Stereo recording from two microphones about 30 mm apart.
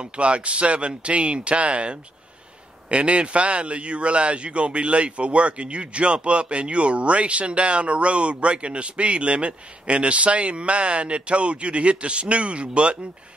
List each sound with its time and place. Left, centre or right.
0.0 s a man's voice: right